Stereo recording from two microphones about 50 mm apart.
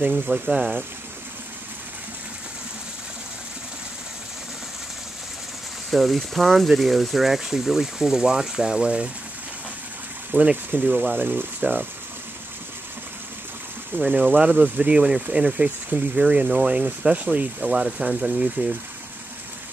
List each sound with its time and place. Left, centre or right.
0.3 s speech: centre
5.9 s speech: centre; by 9.1 s right
10.3 s speech: right
13.9 s speech: right
14.4 s speech: right
17.7 s speech: centre